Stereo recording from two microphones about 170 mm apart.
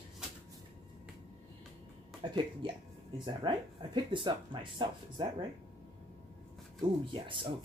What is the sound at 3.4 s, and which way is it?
Speech, 30° right (ahead or behind).